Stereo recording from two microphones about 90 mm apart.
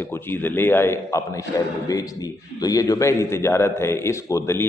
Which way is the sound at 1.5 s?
40° left (ahead or behind).